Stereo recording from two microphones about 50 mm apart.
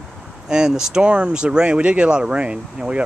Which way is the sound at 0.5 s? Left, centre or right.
Centre.